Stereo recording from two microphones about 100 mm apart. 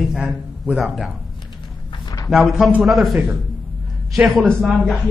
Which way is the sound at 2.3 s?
Centre (ahead or behind).